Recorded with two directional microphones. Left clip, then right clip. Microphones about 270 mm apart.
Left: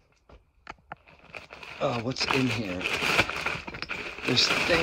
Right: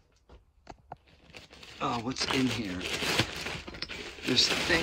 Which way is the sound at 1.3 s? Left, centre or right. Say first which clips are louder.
Left 7 dB; centre.